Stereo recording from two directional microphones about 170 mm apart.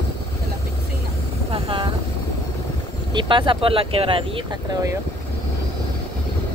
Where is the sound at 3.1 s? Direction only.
30° right (ahead or behind).